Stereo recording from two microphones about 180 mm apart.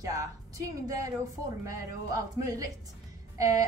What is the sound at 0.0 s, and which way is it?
Music, 15° right (ahead or behind).